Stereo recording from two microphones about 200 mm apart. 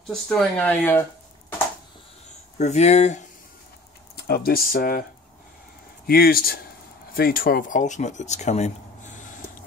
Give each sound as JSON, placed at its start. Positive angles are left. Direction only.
{"t": 0.1, "sound": "speech", "side_deg": 5}
{"t": 2.6, "sound": "speech", "side_deg": 35}
{"t": 4.3, "sound": "speech", "side_deg": 50}
{"t": 6.0, "sound": "speech", "side_deg": 50}